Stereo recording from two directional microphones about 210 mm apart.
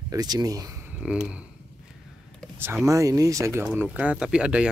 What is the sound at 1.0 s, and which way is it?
Speech, 5° right (ahead or behind).